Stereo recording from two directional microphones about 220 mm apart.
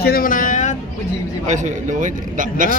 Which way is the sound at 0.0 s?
40° left (ahead or behind).